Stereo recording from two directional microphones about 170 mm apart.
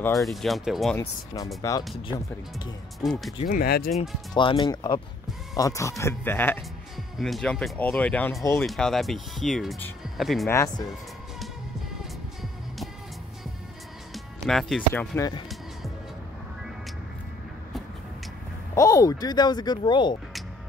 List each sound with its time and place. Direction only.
0.1 s speech: centre (ahead or behind)
0.9 s speech: 20° left (ahead or behind)
3.0 s speech: centre (ahead or behind)
3.4 s speech: 60° left (ahead or behind)
3.9 s speech: centre (ahead or behind)
4.4 s speech: 25° left (ahead or behind)
7.2 s speech: centre (ahead or behind)
8.5 s speech: 5° left (ahead or behind)
10.5 s speech: 15° left (ahead or behind)
12.0 s music: centre (ahead or behind)
14.1 s speech: centre (ahead or behind)
15.1 s speech: 20° left (ahead or behind)
18.8 s speech: 20° left (ahead or behind)